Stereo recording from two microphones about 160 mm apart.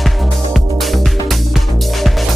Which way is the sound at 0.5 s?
Centre (ahead or behind).